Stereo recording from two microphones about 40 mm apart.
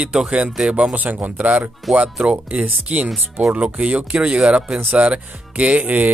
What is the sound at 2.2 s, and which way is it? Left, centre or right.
Speech, right.